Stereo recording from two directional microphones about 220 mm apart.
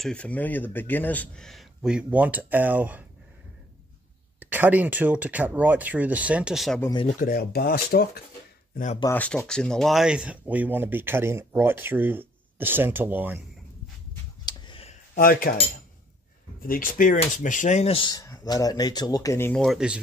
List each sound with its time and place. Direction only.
0.0 s speech: 5° left (ahead or behind)
4.4 s speech: 10° right (ahead or behind)
6.8 s speech: 20° left (ahead or behind)
7.2 s speech: 40° left (ahead or behind)
8.7 s speech: 35° left (ahead or behind)
9.0 s speech: 10° left (ahead or behind); by 13.4 s 10° right (ahead or behind)
14.4 s a sound: 20° left (ahead or behind)
15.1 s speech: 40° left (ahead or behind)
16.6 s speech: 40° left (ahead or behind); by 20.0 s centre (ahead or behind)